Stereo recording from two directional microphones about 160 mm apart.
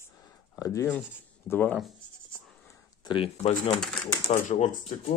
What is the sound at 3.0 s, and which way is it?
Speech, 35° left (ahead or behind).